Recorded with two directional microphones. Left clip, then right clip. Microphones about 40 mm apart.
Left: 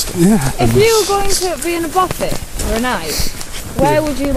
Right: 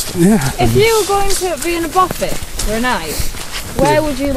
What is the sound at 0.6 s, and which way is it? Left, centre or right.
Speech, centre.